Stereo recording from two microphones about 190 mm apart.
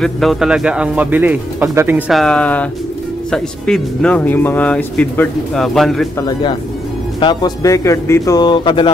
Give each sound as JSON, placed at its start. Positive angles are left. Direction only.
{"t": 0.0, "sound": "speech", "side_deg": 0}
{"t": 6.1, "sound": "speech", "side_deg": 20}